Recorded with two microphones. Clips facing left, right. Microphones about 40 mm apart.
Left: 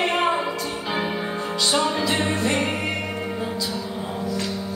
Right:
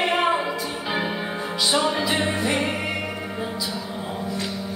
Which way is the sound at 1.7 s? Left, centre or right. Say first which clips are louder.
Even; centre.